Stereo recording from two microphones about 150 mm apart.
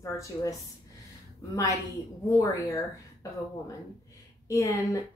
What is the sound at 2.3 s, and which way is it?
Speech, 20° left (ahead or behind).